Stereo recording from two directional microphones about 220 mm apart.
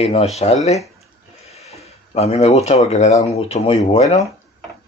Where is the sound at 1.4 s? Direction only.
30° left (ahead or behind).